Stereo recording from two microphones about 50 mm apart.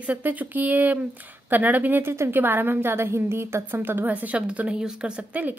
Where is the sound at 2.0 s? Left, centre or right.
Right.